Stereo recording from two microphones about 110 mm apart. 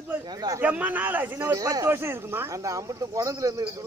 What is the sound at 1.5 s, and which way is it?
Speech, 35° right (ahead or behind).